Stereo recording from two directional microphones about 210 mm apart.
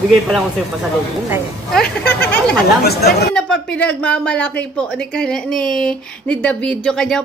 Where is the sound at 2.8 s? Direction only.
50° left (ahead or behind).